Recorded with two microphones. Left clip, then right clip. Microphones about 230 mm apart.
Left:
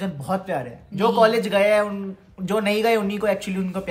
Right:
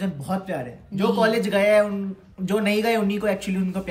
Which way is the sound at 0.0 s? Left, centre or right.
Centre.